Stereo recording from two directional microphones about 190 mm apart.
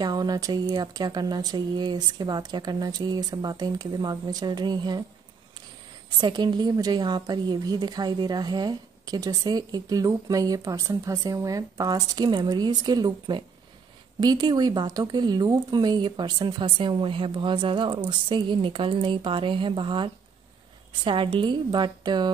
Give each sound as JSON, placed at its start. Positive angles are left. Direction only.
{"t": 0.0, "sound": "a woman's voice", "side_deg": -20}
{"t": 6.2, "sound": "a woman's voice", "side_deg": -25}